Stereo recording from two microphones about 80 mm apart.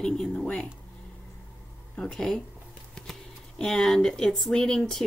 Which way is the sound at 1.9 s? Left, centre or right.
Centre.